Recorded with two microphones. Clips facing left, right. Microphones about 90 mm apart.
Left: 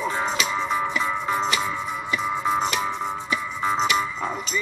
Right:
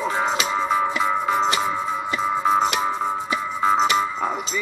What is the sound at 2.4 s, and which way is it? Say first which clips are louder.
Music: right 5 dB; 40° right (ahead or behind).